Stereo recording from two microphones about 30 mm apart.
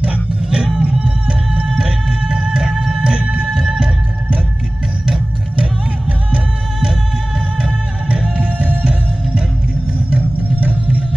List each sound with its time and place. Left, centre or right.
0.7 s music: right
2.0 s music: right
3.0 s music: right
3.4 s music: centre